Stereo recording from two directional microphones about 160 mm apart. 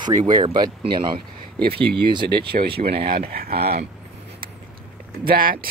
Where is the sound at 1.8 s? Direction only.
30° right (ahead or behind).